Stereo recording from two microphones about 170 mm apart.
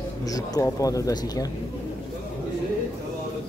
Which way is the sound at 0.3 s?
20° left (ahead or behind).